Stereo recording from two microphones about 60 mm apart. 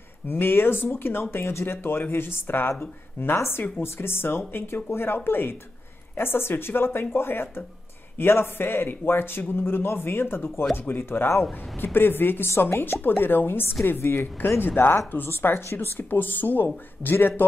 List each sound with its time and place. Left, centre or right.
0.3 s speech: left